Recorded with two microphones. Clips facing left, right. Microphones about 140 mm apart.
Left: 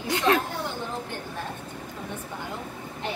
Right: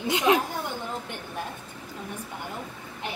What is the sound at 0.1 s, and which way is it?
Speech, 15° right (ahead or behind).